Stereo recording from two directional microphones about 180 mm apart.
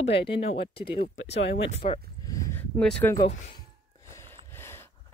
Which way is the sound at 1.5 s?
85° left.